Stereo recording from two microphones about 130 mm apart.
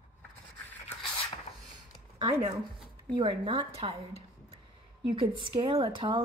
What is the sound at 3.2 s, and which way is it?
Speech, 40° right (ahead or behind).